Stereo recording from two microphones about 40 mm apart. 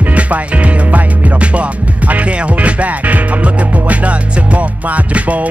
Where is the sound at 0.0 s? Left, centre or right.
Right.